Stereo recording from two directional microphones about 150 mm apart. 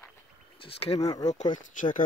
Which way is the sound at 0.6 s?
40° left (ahead or behind).